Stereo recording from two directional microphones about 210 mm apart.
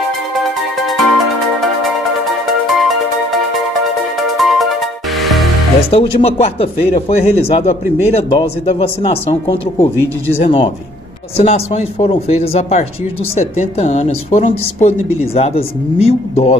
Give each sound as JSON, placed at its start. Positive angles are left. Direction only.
{"t": 0.4, "sound": "music", "side_deg": 0}
{"t": 5.9, "sound": "speech", "side_deg": 30}
{"t": 10.0, "sound": "speech", "side_deg": 10}
{"t": 10.4, "sound": "speech", "side_deg": 25}